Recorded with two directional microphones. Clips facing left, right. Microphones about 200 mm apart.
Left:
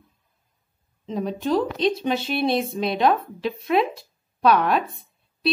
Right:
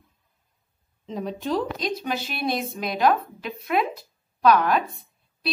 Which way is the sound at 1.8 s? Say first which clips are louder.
Left 6 dB; 25° left (ahead or behind).